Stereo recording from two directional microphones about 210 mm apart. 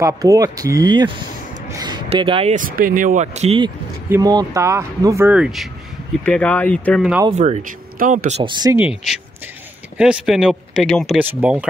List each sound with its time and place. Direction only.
0.0 s speech: 15° right (ahead or behind)
1.7 s a sound: 20° right (ahead or behind)
2.5 s speech: 40° right (ahead or behind); by 7.2 s 5° right (ahead or behind)
7.2 s speech: 35° right (ahead or behind); by 11.6 s 5° right (ahead or behind)